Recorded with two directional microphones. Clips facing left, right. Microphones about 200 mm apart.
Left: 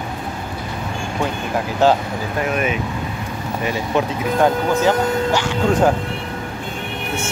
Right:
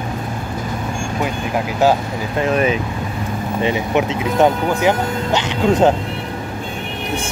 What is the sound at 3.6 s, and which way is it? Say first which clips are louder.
Speech: right 2 dB; 20° right (ahead or behind).